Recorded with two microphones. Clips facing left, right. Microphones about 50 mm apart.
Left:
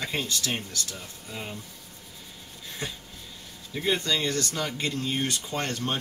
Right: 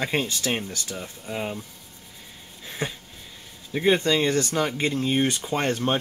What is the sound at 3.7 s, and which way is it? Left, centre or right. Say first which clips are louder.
Speech: right 6 dB; right.